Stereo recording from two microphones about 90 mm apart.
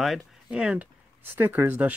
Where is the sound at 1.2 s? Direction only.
25° right (ahead or behind).